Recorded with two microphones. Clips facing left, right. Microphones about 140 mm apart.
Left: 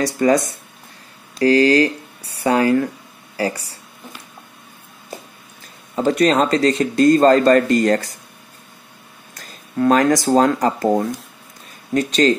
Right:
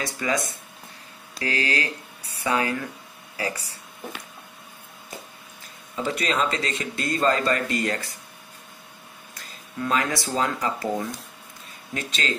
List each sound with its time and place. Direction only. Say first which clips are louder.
0.0 s speech: left 11 dB; 40° left (ahead or behind)
5.9 s speech: left 10 dB; 45° left (ahead or behind)
9.3 s speech: left 11 dB; 45° left (ahead or behind)